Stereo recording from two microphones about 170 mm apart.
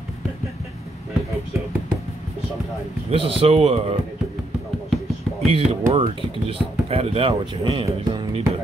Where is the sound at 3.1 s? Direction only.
35° right (ahead or behind).